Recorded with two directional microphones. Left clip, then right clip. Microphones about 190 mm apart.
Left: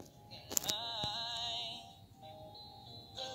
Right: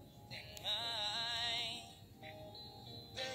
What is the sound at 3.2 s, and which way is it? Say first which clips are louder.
Music: right 1 dB; 30° right (ahead or behind).